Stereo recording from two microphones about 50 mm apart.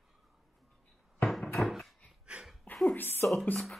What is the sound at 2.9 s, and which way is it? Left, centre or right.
Speech, left.